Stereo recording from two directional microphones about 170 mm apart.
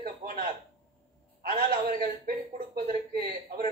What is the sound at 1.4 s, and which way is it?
A man's voice, 60° right (ahead or behind).